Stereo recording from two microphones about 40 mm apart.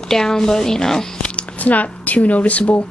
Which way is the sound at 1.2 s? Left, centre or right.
Left.